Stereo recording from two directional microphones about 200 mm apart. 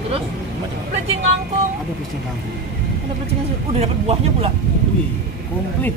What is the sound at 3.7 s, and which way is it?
Speech, 30° right (ahead or behind).